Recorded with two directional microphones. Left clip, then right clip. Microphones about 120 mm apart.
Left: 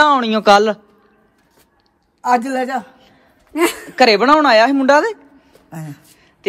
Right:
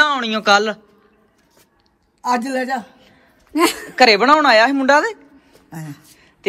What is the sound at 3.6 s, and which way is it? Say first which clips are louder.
Speech: even; 60° right (ahead or behind).